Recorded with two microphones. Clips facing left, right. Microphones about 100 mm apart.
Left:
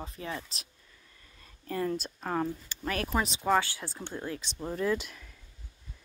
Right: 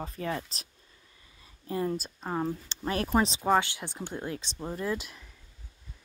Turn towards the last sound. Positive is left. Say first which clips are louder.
# left 3 dB
turn(degrees=0)  # may be behind; listen again after turning